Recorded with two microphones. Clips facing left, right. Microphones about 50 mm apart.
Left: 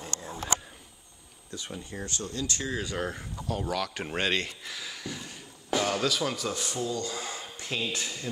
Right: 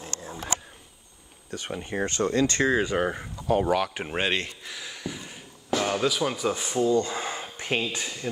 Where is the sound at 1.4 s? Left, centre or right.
Right.